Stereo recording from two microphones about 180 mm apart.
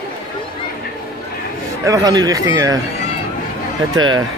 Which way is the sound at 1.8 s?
20° right (ahead or behind).